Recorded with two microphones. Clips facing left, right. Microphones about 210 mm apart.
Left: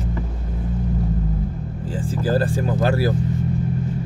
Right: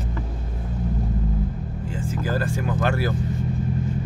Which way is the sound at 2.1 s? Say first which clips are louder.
Left 5 dB; 35° left (ahead or behind).